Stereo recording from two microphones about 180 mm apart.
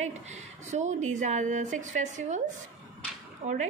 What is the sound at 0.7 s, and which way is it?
A woman's voice, 40° right (ahead or behind).